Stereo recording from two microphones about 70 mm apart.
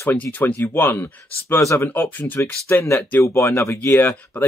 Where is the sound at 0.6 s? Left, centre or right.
Left.